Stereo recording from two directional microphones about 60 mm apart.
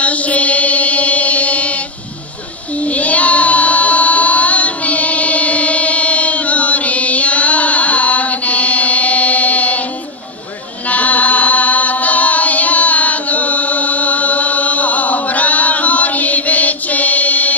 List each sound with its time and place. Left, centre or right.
0.0 s chant: left
2.8 s child singing: left
10.9 s music: left